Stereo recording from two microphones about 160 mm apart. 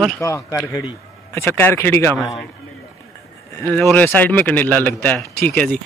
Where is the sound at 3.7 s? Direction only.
10° left (ahead or behind).